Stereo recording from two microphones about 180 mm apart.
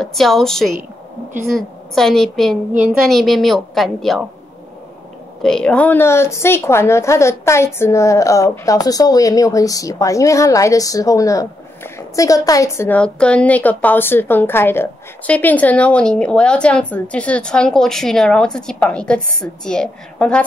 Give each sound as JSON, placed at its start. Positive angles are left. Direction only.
{"t": 0.0, "sound": "a woman's voice", "side_deg": 0}
{"t": 5.4, "sound": "a woman's voice", "side_deg": 5}